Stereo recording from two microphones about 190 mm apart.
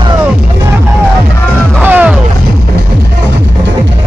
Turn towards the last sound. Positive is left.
turn(degrees=-10)  # may be behind; listen again after turning